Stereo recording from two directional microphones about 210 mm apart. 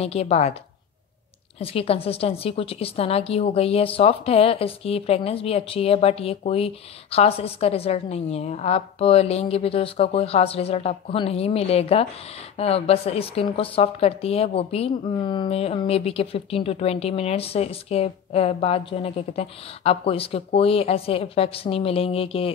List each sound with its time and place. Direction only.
0.0 s a woman's voice: 30° left (ahead or behind)
1.6 s a woman's voice: 25° left (ahead or behind)